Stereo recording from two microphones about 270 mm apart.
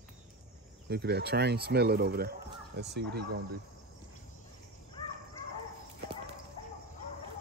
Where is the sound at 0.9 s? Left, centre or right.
Right.